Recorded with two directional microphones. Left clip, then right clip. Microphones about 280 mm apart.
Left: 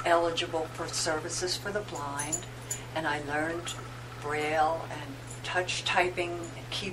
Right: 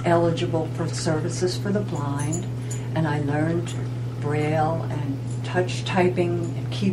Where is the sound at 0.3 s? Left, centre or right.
Centre.